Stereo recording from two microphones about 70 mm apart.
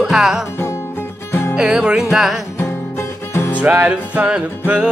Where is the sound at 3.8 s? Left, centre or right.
Centre.